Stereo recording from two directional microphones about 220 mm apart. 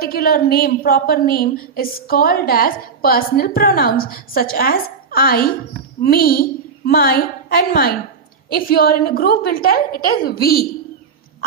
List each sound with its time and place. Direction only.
0.0 s a woman's voice: 40° left (ahead or behind)